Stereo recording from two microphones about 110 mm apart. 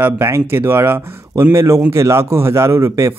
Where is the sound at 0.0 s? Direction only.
20° right (ahead or behind).